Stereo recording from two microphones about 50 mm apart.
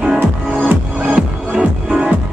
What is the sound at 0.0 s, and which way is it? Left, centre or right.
Music, centre.